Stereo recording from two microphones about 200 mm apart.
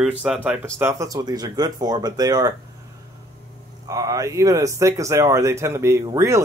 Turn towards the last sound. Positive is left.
turn(degrees=-15)  # may be behind; listen again after turning